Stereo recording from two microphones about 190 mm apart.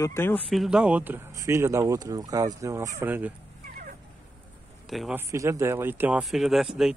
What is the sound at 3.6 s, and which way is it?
Dog, 45° right (ahead or behind).